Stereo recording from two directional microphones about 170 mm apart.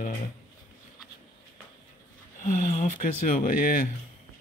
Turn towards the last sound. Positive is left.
turn(degrees=55)  # may be behind; listen again after turning